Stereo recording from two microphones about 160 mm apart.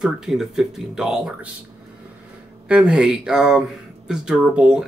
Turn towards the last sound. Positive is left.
turn(degrees=-5)  # may be behind; listen again after turning